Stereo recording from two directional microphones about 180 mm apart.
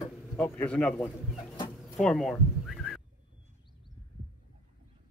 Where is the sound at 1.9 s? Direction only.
Centre (ahead or behind).